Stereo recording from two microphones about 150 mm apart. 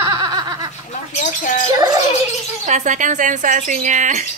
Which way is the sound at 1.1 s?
60° left (ahead or behind).